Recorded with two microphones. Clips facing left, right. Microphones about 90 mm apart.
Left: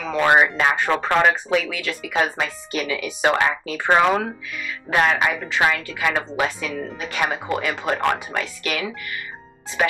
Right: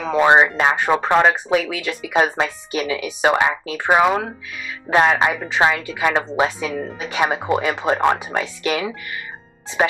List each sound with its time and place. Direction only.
0.1 s speech: 20° right (ahead or behind)
1.9 s speech: 20° right (ahead or behind)
2.7 s speech: 10° right (ahead or behind)
4.8 s speech: 20° right (ahead or behind)
5.3 s speech: 15° right (ahead or behind)